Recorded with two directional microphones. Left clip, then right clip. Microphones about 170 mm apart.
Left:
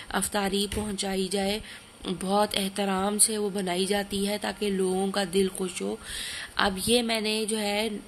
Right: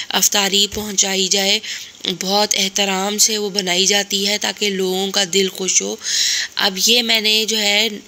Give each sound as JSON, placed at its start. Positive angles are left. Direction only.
{"t": 0.1, "sound": "a woman's voice", "side_deg": -20}